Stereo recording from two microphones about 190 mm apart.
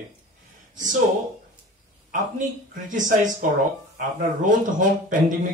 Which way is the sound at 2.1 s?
40° right (ahead or behind).